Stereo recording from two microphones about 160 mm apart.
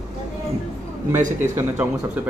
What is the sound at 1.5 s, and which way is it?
Speech, 15° right (ahead or behind).